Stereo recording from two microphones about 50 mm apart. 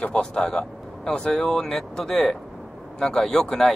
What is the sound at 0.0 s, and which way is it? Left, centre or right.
Speech, centre.